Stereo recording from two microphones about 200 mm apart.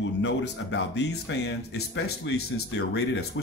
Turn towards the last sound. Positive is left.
turn(degrees=55)  # may be behind; listen again after turning